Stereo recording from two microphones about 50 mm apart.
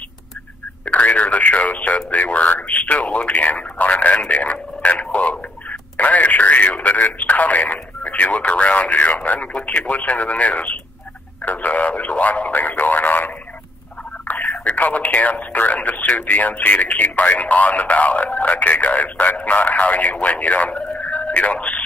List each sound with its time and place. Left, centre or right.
0.8 s speech: left
14.2 s a sound: left
14.6 s speech: left